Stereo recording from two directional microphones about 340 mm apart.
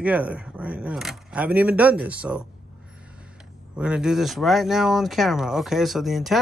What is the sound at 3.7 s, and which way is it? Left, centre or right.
Speech, centre.